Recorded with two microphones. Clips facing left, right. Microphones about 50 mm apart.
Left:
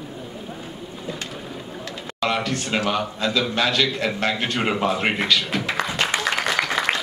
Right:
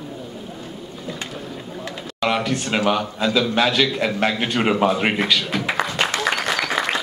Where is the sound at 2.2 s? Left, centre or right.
Centre.